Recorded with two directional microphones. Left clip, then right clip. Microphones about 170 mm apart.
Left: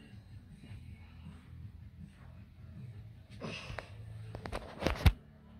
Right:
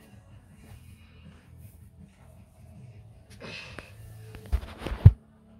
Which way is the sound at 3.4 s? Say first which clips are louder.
Right 3 dB; 15° left (ahead or behind).